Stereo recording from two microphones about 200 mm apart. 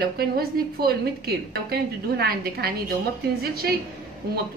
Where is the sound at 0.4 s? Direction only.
50° right (ahead or behind).